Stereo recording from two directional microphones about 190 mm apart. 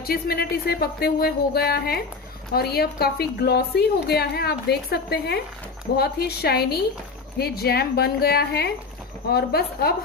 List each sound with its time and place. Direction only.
0.0 s a woman's voice: 50° left (ahead or behind)